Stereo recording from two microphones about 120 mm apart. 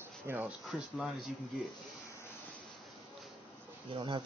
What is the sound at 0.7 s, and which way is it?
Speech, centre (ahead or behind).